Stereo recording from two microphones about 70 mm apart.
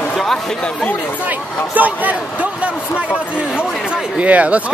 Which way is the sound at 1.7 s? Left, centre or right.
Right.